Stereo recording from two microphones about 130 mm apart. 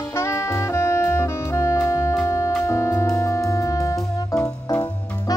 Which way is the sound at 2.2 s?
25° left (ahead or behind).